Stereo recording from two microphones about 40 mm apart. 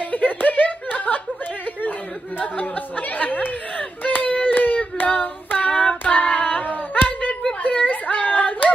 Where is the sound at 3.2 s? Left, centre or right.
Left.